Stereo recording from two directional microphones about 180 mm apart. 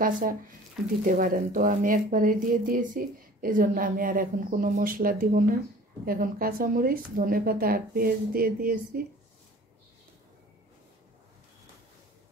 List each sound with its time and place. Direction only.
0.0 s speech: 50° right (ahead or behind)